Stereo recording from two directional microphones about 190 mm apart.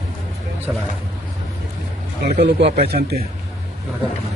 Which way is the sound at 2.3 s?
65° right (ahead or behind).